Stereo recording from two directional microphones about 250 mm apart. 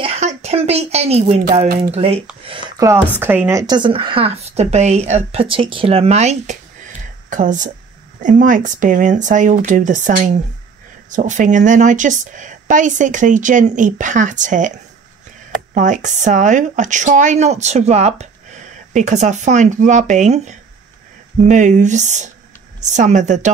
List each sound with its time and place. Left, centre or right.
0.0 s a woman's voice: right
15.7 s speech: right